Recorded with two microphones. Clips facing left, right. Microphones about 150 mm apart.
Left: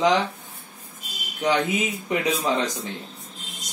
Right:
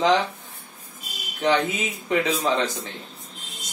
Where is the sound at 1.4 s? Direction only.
15° left (ahead or behind).